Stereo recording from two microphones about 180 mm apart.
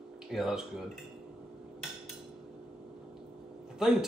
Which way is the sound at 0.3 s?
Centre (ahead or behind).